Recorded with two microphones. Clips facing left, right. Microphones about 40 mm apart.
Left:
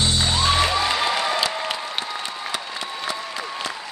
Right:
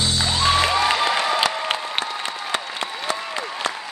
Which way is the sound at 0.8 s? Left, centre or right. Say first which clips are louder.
Right 2 dB; right.